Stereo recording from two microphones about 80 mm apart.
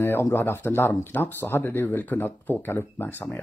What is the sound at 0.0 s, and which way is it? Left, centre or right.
Speech, left.